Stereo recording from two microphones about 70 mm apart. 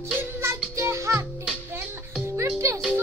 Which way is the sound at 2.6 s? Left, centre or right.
Right.